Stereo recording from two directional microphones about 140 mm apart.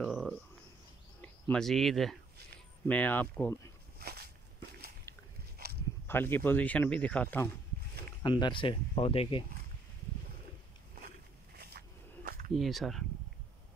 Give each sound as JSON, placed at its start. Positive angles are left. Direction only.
{"t": 0.0, "sound": "a sound", "side_deg": 0}
{"t": 1.2, "sound": "speech", "side_deg": 5}
{"t": 2.9, "sound": "speech", "side_deg": 10}
{"t": 4.0, "sound": "walk", "side_deg": -90}
{"t": 5.1, "sound": "biting", "side_deg": 20}
{"t": 6.0, "sound": "speech", "side_deg": 15}
{"t": 8.2, "sound": "speech", "side_deg": 30}
{"t": 11.7, "sound": "a sound", "side_deg": -90}
{"t": 12.5, "sound": "speech", "side_deg": 0}